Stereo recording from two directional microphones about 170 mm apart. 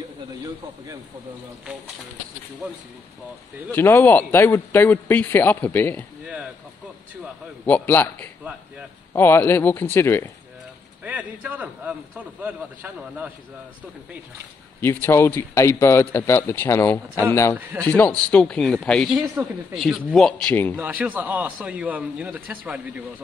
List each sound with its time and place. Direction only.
3.7 s a man's voice: 10° left (ahead or behind)
7.6 s a man's voice: 10° left (ahead or behind)
11.1 s a man's voice: 10° right (ahead or behind)
14.8 s a man's voice: 15° left (ahead or behind)
20.7 s a man's voice: 10° right (ahead or behind)